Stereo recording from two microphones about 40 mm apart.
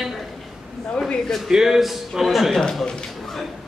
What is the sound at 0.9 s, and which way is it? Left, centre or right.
Speech, centre.